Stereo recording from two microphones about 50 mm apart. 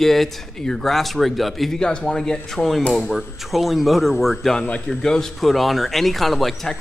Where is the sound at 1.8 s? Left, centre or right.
Centre.